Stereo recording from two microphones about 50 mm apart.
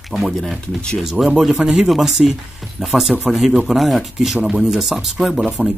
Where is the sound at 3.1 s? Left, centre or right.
Centre.